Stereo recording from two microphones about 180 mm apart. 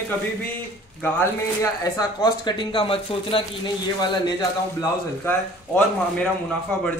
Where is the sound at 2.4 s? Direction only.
25° left (ahead or behind).